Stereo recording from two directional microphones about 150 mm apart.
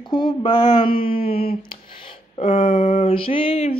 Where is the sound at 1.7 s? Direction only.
35° left (ahead or behind).